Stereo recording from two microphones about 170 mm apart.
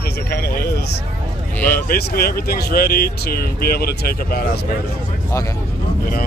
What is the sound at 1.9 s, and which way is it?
Speech, 60° left (ahead or behind).